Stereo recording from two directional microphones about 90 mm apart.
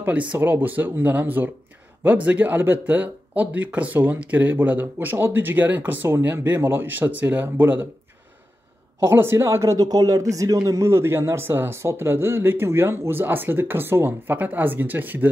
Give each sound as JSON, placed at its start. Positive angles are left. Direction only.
{"t": 0.0, "sound": "speech", "side_deg": -15}
{"t": 9.0, "sound": "speech", "side_deg": -25}